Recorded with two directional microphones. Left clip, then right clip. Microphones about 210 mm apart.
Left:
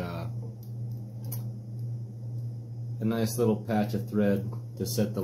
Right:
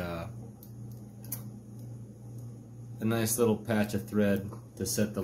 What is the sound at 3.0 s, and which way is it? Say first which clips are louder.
Speech: even; 20° right (ahead or behind).